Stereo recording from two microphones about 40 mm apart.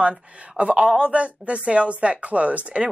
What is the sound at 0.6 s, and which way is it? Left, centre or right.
Speech, right.